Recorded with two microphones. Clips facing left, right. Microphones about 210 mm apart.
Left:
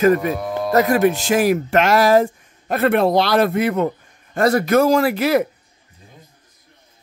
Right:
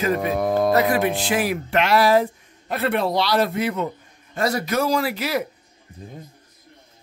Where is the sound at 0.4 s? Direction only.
50° right (ahead or behind).